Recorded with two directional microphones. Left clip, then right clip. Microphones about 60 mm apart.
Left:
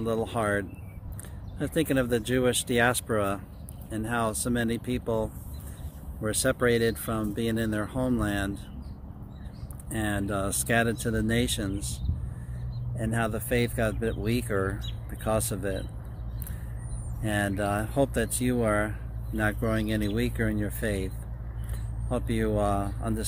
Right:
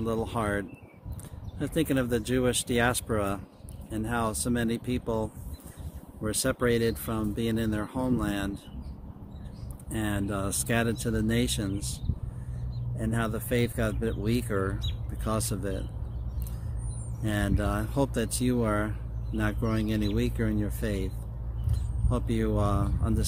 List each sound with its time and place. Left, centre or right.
0.0 s speech: centre
9.8 s speech: centre
12.9 s speech: centre
17.2 s speech: centre
17.8 s speech: centre
19.4 s speech: right
19.8 s speech: centre
22.1 s speech: centre
22.4 s speech: centre